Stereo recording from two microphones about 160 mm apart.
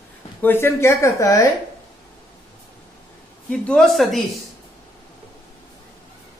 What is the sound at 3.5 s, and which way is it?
Speech, 5° left (ahead or behind).